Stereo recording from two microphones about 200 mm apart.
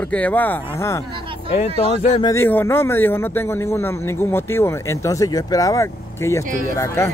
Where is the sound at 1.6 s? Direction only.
30° left (ahead or behind).